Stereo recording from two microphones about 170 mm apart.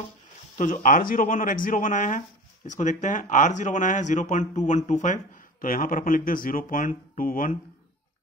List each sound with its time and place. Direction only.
0.6 s speech: 50° left (ahead or behind)